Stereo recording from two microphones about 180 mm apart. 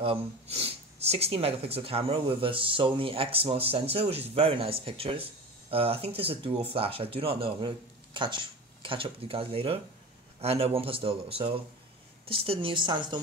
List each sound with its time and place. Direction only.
0.0 s a woman's voice: 30° right (ahead or behind)